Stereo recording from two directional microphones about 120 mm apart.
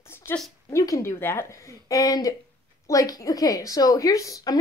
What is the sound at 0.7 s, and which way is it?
A woman's voice, 30° left (ahead or behind).